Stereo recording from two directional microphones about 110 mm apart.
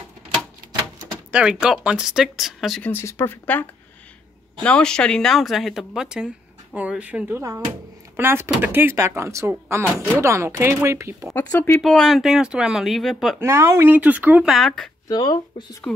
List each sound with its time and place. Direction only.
1.3 s speech: 10° right (ahead or behind)
2.8 s speech: 20° left (ahead or behind)
4.6 s speech: 10° left (ahead or behind); by 11.2 s 25° right (ahead or behind)
11.8 s speech: 5° left (ahead or behind)
13.4 s speech: 25° right (ahead or behind)
14.5 s speech: centre (ahead or behind)
15.0 s speech: 35° left (ahead or behind)